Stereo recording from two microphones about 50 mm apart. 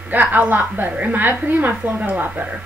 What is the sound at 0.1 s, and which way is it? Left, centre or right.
A woman's voice, right.